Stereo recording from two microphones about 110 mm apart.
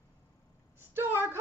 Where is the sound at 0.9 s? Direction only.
20° right (ahead or behind).